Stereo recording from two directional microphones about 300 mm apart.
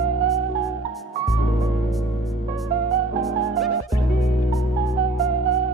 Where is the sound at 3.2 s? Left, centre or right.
Centre.